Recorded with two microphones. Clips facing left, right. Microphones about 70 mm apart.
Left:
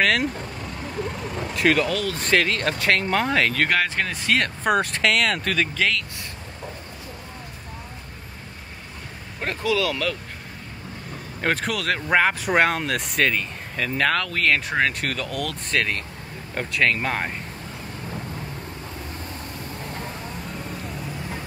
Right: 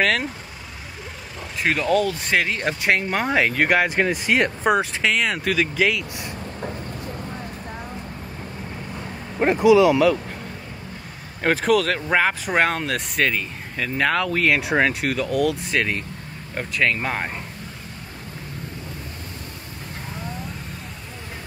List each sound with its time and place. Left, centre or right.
0.0 s speech: centre
1.6 s speech: centre
4.6 s speech: centre
9.4 s speech: centre
11.4 s speech: centre